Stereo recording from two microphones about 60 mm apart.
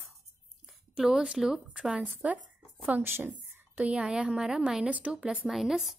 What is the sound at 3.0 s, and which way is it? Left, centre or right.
Speech, right.